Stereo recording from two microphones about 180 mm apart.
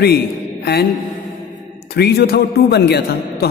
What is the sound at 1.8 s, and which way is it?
A woman's voice, 60° left (ahead or behind).